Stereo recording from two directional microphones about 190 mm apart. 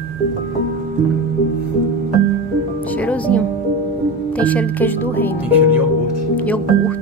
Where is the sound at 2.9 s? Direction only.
5° left (ahead or behind).